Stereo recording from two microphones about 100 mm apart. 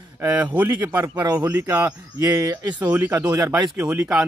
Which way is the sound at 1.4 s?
20° right (ahead or behind).